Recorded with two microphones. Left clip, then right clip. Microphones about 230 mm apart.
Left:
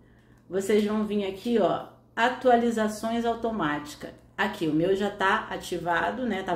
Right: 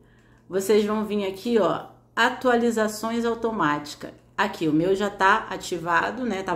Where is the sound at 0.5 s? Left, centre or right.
Right.